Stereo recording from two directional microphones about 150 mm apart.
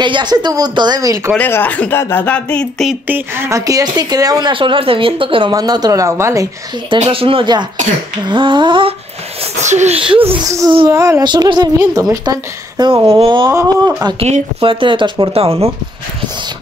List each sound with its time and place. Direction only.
0.0 s speech: 30° right (ahead or behind)
1.3 s speech: 10° left (ahead or behind)
3.1 s speech: 15° right (ahead or behind); by 5.5 s 35° right (ahead or behind)
5.5 s speech: 25° right (ahead or behind)
7.0 s speech: 35° right (ahead or behind)
9.6 s speech: 50° right (ahead or behind)
9.9 s speech: 35° right (ahead or behind)
10.9 s speech: 20° right (ahead or behind); by 13.5 s 35° right (ahead or behind)
13.5 s speech: 20° right (ahead or behind)
14.2 s speech: 40° right (ahead or behind)